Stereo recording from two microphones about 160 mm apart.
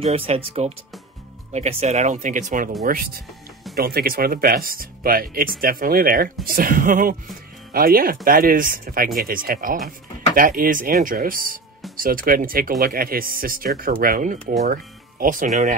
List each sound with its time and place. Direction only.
0.0 s speech: 40° right (ahead or behind)